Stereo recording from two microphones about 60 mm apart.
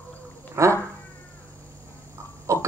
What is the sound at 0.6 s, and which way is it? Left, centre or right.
Cat, right.